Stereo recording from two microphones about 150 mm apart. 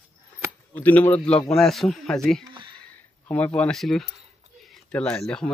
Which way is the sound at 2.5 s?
30° right (ahead or behind).